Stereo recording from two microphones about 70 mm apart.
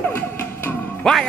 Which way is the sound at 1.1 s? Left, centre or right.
Centre.